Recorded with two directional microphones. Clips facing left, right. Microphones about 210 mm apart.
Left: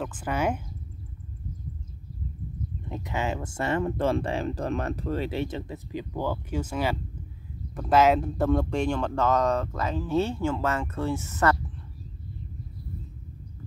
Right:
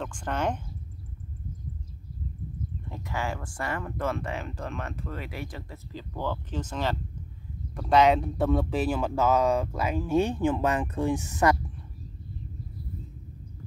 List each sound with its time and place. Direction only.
0.0 s speech: 5° left (ahead or behind)
2.9 s speech: 20° left (ahead or behind); by 11.5 s 15° right (ahead or behind)